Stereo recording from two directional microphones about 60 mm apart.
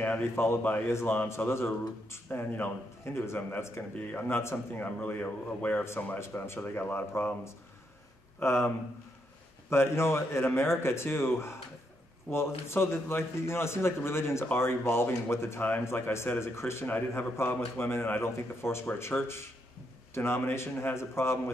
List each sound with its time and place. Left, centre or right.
0.2 s a man's voice: left
5.6 s speech: left
6.1 s speech: left
8.4 s a man's voice: left